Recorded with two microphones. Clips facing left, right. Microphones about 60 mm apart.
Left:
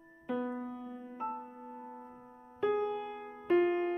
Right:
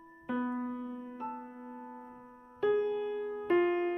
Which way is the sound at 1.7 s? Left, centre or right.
Centre.